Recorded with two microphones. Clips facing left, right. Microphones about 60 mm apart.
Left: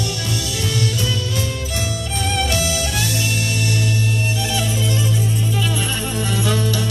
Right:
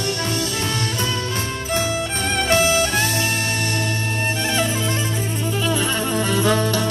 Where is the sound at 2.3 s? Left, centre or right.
Right.